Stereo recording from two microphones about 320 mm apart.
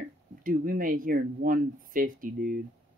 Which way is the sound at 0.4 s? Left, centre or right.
Right.